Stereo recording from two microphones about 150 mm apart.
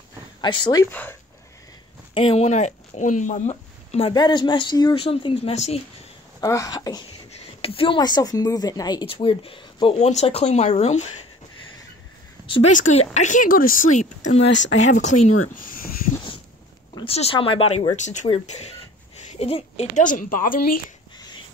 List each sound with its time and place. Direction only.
0.4 s speech: 30° left (ahead or behind)
0.8 s speech: 15° left (ahead or behind)
2.1 s speech: 40° left (ahead or behind)
4.1 s speech: 30° left (ahead or behind)
6.4 s speech: 20° left (ahead or behind)
7.6 s speech: 35° left (ahead or behind)
9.0 s speech: 35° left (ahead or behind)
12.7 s speech: 50° left (ahead or behind); by 15.9 s 70° left (ahead or behind)
16.9 s speech: 40° left (ahead or behind)
17.9 s speech: 55° left (ahead or behind)
18.5 s a sound: 45° left (ahead or behind)
20.0 s speech: 65° left (ahead or behind)